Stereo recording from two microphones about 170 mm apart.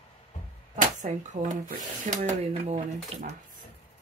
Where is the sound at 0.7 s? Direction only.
50° right (ahead or behind).